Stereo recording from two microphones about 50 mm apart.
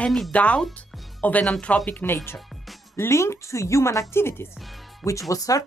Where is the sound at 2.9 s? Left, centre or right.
Left.